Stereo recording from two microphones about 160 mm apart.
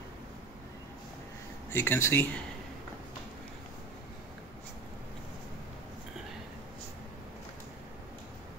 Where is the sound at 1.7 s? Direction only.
15° left (ahead or behind).